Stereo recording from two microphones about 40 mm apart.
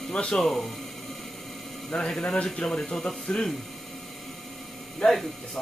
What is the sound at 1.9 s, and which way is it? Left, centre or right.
Speech, left.